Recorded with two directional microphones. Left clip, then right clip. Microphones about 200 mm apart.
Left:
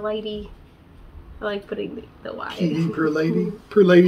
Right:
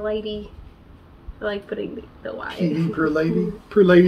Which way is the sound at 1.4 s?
10° left (ahead or behind).